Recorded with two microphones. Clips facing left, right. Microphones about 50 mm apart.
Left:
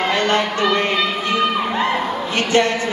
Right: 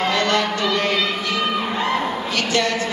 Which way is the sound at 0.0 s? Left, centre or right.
Left.